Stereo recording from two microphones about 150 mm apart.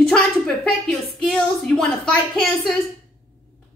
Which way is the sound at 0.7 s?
Centre (ahead or behind).